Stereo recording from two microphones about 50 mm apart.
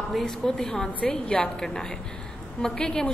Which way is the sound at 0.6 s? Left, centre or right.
Left.